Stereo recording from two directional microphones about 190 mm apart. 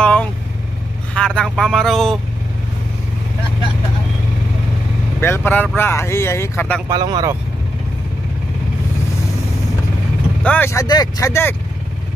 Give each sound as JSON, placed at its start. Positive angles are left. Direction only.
{"t": 0.0, "sound": "vehicle", "side_deg": 5}
{"t": 1.1, "sound": "speech", "side_deg": 5}
{"t": 5.2, "sound": "speech", "side_deg": 10}
{"t": 6.9, "sound": "speech", "side_deg": -20}
{"t": 10.4, "sound": "speech", "side_deg": 10}